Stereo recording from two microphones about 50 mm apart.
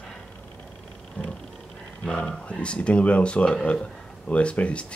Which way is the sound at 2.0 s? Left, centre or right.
Left.